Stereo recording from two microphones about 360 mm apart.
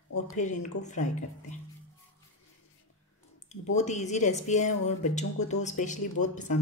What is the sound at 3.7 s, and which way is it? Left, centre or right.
Speech, centre.